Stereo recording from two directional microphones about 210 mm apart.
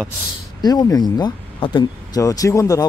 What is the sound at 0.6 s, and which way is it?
Speech, 20° left (ahead or behind).